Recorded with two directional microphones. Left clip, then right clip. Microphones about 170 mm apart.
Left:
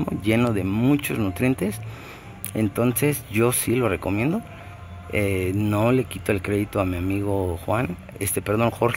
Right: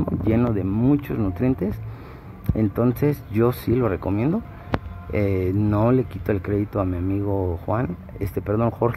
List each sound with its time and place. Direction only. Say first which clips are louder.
0.0 s speech: even; 10° left (ahead or behind)